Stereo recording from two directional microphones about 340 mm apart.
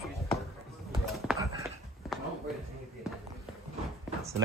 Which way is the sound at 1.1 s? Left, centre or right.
Centre.